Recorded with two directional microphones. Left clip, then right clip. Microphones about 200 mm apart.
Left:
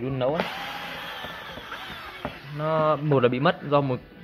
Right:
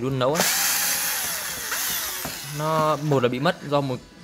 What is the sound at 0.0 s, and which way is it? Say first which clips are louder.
Speech: right 3 dB; 30° right (ahead or behind).